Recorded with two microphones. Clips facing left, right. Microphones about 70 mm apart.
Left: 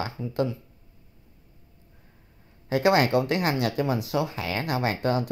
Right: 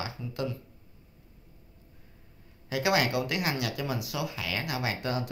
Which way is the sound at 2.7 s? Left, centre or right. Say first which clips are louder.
Left 6 dB; left.